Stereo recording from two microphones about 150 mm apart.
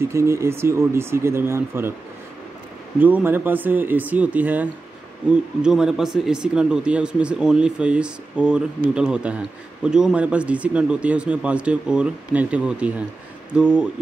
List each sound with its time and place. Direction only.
0.0 s speech: 20° right (ahead or behind)
3.0 s speech: 10° right (ahead or behind)